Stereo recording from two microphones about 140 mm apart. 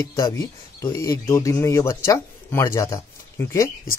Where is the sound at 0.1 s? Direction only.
25° left (ahead or behind).